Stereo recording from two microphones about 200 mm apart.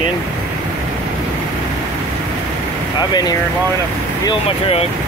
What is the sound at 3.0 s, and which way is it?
Speech, 20° left (ahead or behind).